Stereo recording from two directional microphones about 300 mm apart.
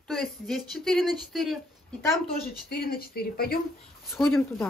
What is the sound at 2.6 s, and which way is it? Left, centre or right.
Speech, left.